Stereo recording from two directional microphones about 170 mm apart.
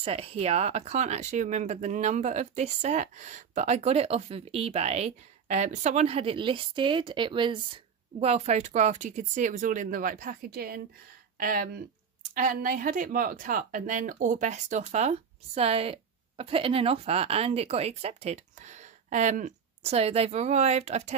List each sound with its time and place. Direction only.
0.0 s speech: 35° right (ahead or behind)